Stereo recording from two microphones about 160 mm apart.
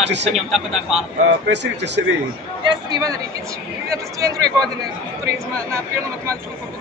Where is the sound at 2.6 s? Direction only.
25° right (ahead or behind).